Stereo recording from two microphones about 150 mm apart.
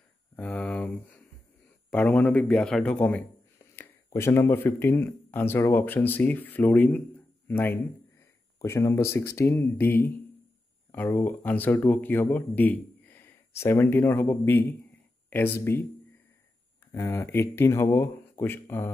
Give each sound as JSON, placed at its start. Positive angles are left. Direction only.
{"t": 0.4, "sound": "speech", "side_deg": 10}
{"t": 16.9, "sound": "speech", "side_deg": 20}